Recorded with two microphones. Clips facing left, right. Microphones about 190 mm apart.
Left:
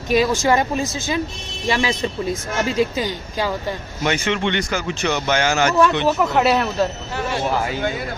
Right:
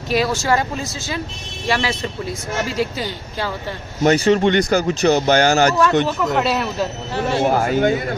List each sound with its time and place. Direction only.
0.1 s speech: 15° left (ahead or behind)
4.0 s speech: 40° right (ahead or behind)
6.4 s speech: centre (ahead or behind)
7.4 s a man's voice: 50° right (ahead or behind)